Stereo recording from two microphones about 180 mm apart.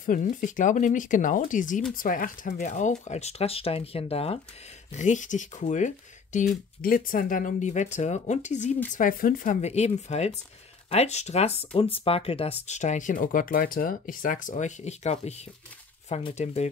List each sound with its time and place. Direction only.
0.0 s speech: 45° left (ahead or behind)